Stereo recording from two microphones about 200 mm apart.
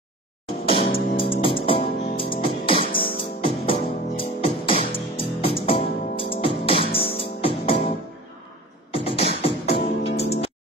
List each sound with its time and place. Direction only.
0.7 s music: 25° left (ahead or behind)
8.9 s music: 30° left (ahead or behind)